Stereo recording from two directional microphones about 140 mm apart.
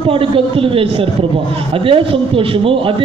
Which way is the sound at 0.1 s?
40° right (ahead or behind).